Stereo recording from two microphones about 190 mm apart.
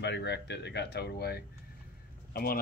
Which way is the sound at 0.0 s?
65° left (ahead or behind).